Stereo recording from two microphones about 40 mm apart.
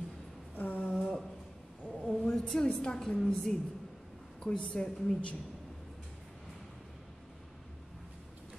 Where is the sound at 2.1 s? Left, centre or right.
Left.